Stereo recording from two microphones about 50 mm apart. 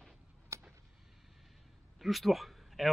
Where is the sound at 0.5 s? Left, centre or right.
Right.